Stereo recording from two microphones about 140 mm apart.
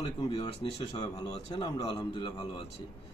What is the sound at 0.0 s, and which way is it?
Speech, 40° left (ahead or behind).